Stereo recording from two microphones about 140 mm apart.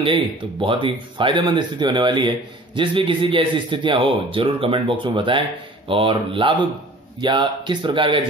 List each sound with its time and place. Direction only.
0.0 s speech: 40° right (ahead or behind)